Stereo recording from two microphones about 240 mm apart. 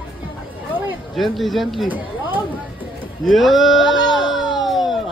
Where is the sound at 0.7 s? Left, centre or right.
Centre.